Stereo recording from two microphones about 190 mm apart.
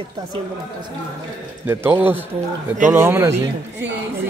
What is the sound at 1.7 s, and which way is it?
A man's voice, 10° right (ahead or behind).